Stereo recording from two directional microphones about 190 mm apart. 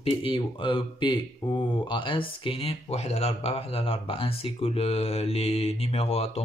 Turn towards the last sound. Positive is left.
turn(degrees=30)  # may be behind; listen again after turning